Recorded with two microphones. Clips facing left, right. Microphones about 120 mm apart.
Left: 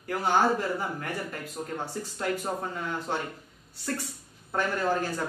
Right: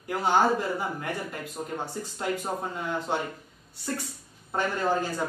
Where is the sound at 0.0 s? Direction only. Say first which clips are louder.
Right 1 dB; 20° right (ahead or behind).